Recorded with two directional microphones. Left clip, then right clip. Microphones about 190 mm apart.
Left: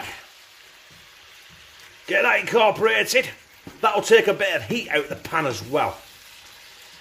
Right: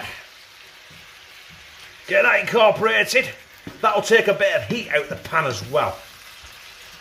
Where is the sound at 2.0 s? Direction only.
30° left (ahead or behind).